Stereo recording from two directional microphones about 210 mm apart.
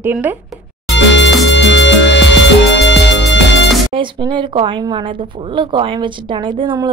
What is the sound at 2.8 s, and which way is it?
Music, 60° left (ahead or behind).